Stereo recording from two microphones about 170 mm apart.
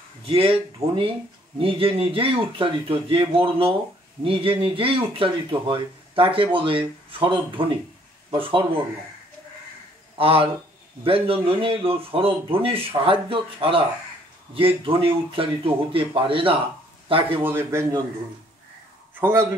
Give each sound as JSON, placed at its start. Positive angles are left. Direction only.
{"t": 0.2, "sound": "speech", "side_deg": -35}
{"t": 10.1, "sound": "speech", "side_deg": -35}
{"t": 17.4, "sound": "a man's voice", "side_deg": -15}
{"t": 19.1, "sound": "speech", "side_deg": -10}